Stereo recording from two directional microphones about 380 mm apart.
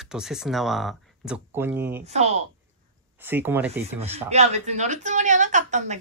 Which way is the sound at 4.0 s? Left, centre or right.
Centre.